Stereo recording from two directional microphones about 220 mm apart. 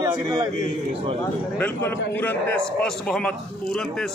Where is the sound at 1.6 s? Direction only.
10° left (ahead or behind).